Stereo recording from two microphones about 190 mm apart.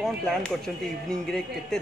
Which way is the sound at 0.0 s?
5° left (ahead or behind).